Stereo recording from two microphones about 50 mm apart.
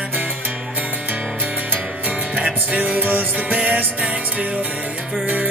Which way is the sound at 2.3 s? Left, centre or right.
Right.